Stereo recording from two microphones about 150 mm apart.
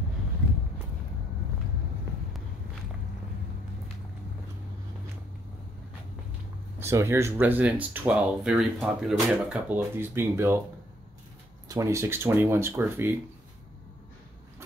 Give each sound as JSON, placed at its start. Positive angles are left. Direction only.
{"t": 6.8, "sound": "speech", "side_deg": -15}
{"t": 11.7, "sound": "speech", "side_deg": -20}